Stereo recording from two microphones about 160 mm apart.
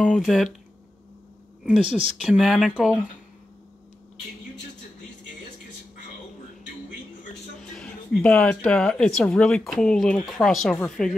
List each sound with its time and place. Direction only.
0.2 s speech: centre (ahead or behind)
1.6 s speech: 5° right (ahead or behind)
7.7 s speech: 5° left (ahead or behind)